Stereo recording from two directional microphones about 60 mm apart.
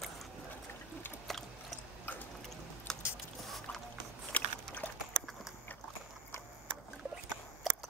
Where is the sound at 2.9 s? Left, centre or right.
Centre.